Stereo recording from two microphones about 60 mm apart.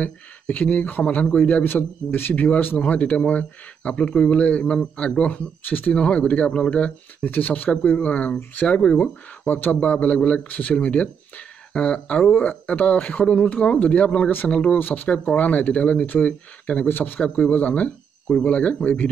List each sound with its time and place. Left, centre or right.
0.0 s speech: left
7.2 s speech: left
8.9 s speech: left
12.3 s speech: left; by 14.8 s centre
14.8 s speech: left
16.8 s speech: left